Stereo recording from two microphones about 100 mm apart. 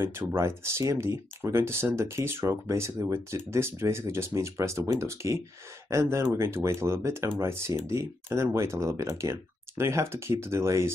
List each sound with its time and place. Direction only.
0.0 s speech: 25° right (ahead or behind)